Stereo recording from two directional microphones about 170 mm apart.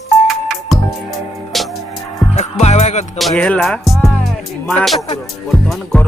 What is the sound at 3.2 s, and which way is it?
Speech, 5° left (ahead or behind).